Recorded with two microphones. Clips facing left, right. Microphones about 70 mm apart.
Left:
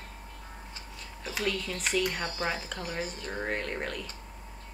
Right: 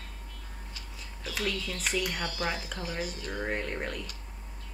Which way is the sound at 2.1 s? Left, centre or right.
Left.